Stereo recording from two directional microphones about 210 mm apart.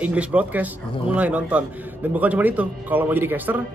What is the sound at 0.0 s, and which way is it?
Speech, 5° right (ahead or behind).